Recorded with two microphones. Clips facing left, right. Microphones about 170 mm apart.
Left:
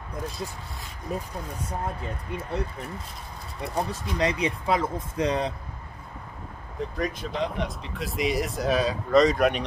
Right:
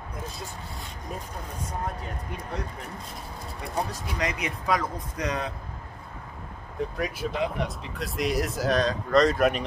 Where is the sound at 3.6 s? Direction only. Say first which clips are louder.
Left 2 dB; 30° left (ahead or behind).